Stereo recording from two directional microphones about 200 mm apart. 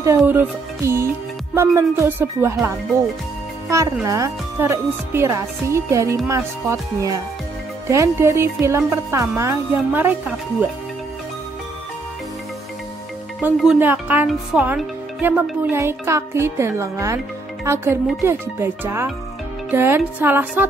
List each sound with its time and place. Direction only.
0.2 s speech: 10° right (ahead or behind)
13.4 s speech: 5° right (ahead or behind)